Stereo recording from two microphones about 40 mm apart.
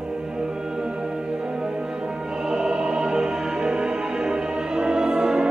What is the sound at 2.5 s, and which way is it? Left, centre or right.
Music, right.